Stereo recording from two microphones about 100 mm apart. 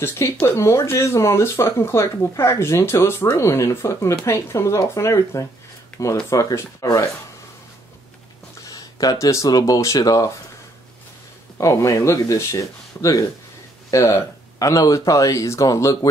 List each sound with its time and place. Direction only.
0.0 s speech: 25° left (ahead or behind)
8.6 s speech: 35° left (ahead or behind)
11.5 s speech: 30° left (ahead or behind)